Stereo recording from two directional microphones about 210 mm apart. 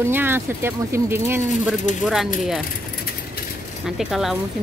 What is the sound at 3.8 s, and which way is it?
Speech, centre (ahead or behind).